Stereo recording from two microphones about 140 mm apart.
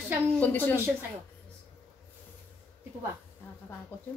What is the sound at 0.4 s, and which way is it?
Speech, 15° left (ahead or behind).